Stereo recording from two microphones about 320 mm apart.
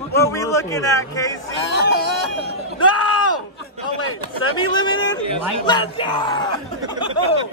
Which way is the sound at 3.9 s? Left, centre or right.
Left.